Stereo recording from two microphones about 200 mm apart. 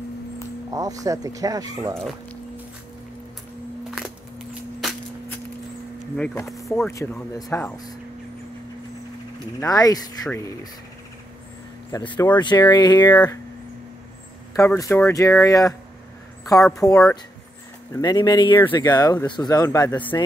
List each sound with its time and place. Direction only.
0.7 s speech: 15° right (ahead or behind)
6.1 s speech: 5° left (ahead or behind)
6.7 s speech: 15° left (ahead or behind)
9.6 s speech: 20° left (ahead or behind)
11.9 s speech: 20° left (ahead or behind)
14.5 s speech: 15° left (ahead or behind)
16.7 s speech: 15° left (ahead or behind)